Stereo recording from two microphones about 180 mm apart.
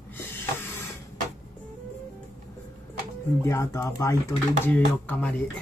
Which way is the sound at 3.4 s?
15° left (ahead or behind).